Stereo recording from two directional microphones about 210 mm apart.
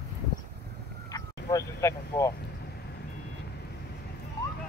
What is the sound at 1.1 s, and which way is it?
Vehicle, 15° left (ahead or behind).